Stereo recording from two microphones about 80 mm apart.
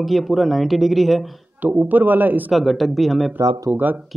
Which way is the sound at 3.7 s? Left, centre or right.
Right.